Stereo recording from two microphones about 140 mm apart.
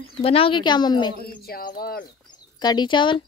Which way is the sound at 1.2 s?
90° left.